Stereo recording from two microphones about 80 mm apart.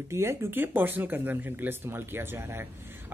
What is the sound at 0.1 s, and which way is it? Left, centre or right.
Speech, right.